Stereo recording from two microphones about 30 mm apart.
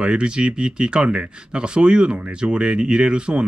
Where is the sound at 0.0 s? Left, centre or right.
Right.